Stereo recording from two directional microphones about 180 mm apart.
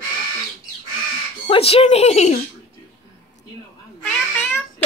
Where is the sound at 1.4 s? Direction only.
30° left (ahead or behind).